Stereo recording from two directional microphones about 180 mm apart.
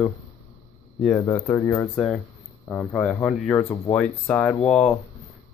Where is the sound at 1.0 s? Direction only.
10° left (ahead or behind).